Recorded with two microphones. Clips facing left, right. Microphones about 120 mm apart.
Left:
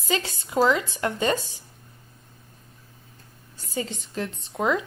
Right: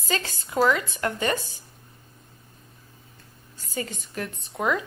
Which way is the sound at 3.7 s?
20° left (ahead or behind).